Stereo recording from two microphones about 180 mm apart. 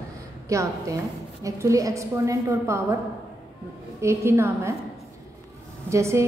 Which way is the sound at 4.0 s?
15° right (ahead or behind).